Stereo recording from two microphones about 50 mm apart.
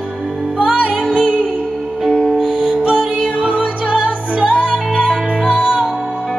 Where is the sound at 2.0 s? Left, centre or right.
Centre.